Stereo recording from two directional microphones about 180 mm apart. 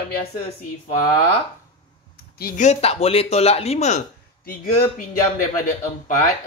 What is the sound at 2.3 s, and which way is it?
Speech, 50° left (ahead or behind).